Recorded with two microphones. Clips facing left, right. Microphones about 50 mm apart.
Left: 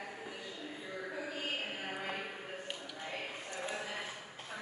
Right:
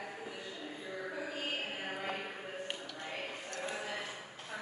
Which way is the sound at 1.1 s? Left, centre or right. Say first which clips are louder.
Even; centre.